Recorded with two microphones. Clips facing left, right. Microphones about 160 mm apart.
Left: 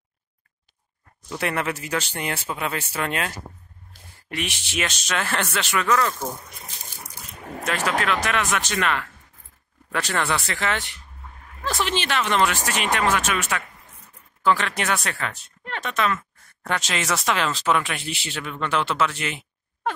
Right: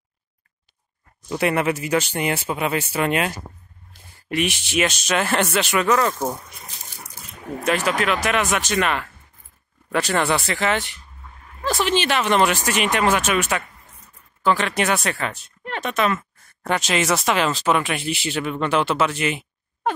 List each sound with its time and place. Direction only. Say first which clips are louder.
1.3 s speech: right 6 dB; 15° right (ahead or behind)
7.6 s speech: right 3 dB; 15° right (ahead or behind)
11.8 s speech: right 4 dB; 10° right (ahead or behind)
14.4 s speech: right 2 dB; 10° right (ahead or behind)